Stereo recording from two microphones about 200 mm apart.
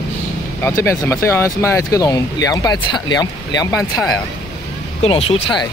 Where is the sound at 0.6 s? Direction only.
15° left (ahead or behind).